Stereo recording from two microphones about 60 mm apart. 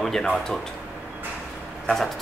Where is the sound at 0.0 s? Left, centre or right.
Centre.